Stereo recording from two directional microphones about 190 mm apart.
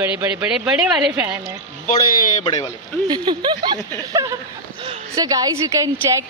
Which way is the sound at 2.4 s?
20° left (ahead or behind).